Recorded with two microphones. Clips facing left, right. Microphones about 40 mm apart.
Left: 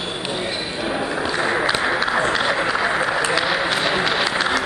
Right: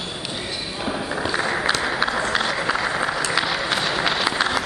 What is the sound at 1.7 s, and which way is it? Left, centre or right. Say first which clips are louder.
Applause: left 3 dB; centre.